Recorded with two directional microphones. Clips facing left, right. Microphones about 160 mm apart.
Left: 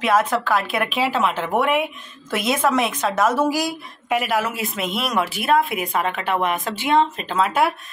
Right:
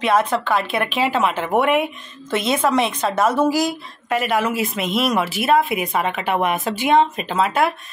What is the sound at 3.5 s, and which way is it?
Speech, 10° left (ahead or behind).